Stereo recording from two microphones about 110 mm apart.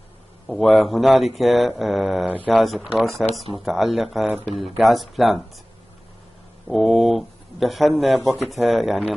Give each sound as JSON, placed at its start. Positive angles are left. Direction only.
{"t": 0.7, "sound": "speech", "side_deg": 0}
{"t": 6.7, "sound": "speech", "side_deg": 0}